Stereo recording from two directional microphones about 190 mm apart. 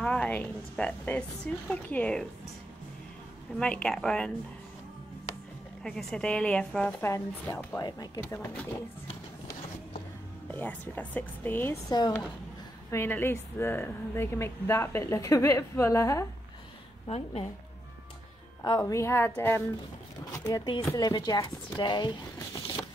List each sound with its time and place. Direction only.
0.0 s a woman's voice: 5° left (ahead or behind)
3.5 s a woman's voice: 5° left (ahead or behind)
5.9 s a woman's voice: 5° left (ahead or behind)
10.5 s a woman's voice: 10° left (ahead or behind)
17.1 s speech: 30° left (ahead or behind)
18.6 s a woman's voice: 20° left (ahead or behind)